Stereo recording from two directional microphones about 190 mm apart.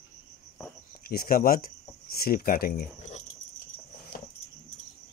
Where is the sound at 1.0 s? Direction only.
50° left (ahead or behind).